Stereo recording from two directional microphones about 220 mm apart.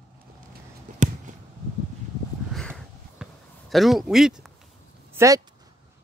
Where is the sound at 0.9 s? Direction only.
35° right (ahead or behind).